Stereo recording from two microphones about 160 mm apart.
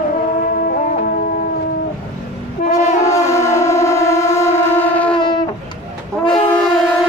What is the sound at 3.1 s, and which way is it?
Shofar, 15° left (ahead or behind).